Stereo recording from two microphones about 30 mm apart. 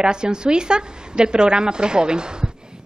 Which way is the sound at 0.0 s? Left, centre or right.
Right.